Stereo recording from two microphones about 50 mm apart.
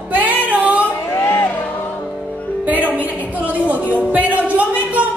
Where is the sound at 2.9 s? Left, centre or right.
Right.